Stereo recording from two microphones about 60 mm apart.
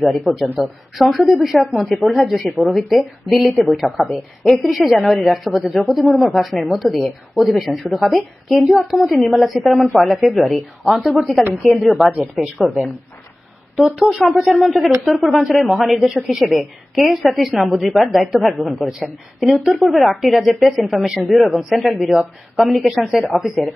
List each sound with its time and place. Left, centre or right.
0.0 s speech: centre
14.0 s speech: centre